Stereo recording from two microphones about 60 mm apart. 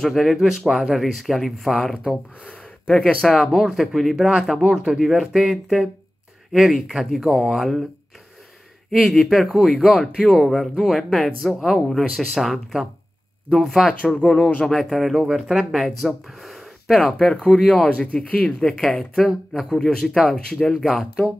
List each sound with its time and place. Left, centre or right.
0.0 s speech: centre
2.9 s speech: centre
3.3 s speech: centre
8.9 s speech: centre
13.8 s speech: centre
14.7 s speech: centre